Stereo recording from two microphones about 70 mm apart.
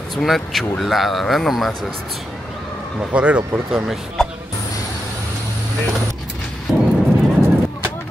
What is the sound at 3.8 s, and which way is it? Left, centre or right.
Speech, centre.